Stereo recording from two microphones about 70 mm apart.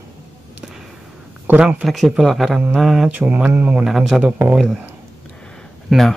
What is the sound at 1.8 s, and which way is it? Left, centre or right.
Speech, centre.